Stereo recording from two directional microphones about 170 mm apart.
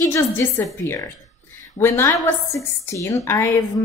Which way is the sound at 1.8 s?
15° left (ahead or behind).